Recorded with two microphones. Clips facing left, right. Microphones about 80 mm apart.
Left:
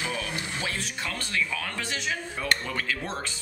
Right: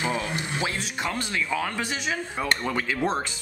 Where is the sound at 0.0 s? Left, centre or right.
Right.